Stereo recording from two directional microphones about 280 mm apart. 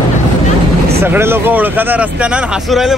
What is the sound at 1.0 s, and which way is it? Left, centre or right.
Speech, centre.